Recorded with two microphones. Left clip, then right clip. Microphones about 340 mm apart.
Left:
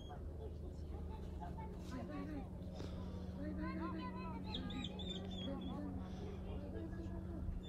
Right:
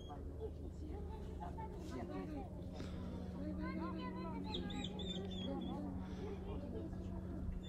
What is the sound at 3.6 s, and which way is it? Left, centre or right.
Vehicle, right.